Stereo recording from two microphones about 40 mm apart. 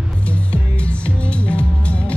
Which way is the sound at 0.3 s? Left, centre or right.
Left.